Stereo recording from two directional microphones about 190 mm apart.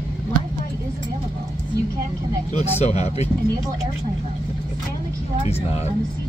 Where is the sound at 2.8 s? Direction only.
35° left (ahead or behind).